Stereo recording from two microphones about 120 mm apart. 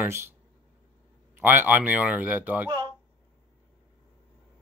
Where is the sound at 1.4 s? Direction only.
15° right (ahead or behind).